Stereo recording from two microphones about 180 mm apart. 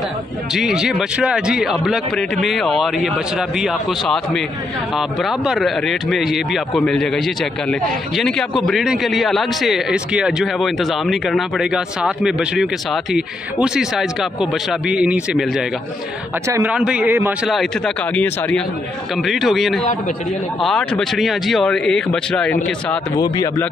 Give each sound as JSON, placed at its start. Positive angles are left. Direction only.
{"t": 0.6, "sound": "a man's voice", "side_deg": 0}
{"t": 16.4, "sound": "a man's voice", "side_deg": -15}
{"t": 17.5, "sound": "a man's voice", "side_deg": 0}
{"t": 23.1, "sound": "a man's voice", "side_deg": 20}